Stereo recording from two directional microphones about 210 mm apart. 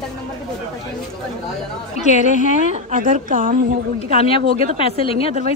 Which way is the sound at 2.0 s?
35° left (ahead or behind).